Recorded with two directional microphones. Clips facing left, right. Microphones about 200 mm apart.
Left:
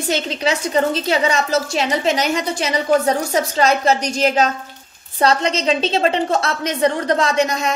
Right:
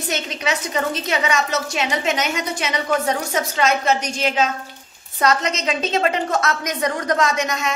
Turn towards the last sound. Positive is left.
turn(degrees=30)  # may be behind; listen again after turning